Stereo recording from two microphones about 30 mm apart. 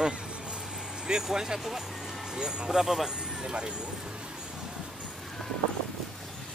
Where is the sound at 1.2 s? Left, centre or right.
Centre.